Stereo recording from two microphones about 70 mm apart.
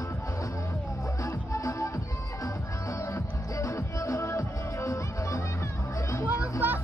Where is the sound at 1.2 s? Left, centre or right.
Left.